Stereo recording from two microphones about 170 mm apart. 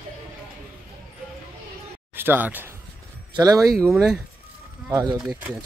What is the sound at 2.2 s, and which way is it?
Speech, 10° right (ahead or behind).